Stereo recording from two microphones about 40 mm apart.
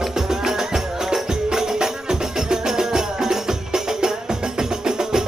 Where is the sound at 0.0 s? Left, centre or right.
Centre.